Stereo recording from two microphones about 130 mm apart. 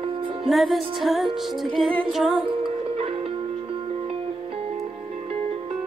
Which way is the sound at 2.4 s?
40° right (ahead or behind).